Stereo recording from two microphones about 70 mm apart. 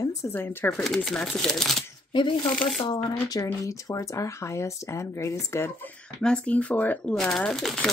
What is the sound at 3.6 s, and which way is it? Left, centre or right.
Speech, left.